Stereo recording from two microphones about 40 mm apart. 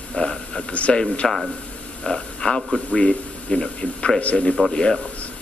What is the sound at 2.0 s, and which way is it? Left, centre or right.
A man's voice, centre.